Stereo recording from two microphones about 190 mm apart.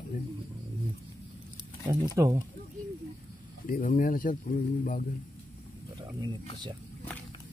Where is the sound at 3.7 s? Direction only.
45° left (ahead or behind).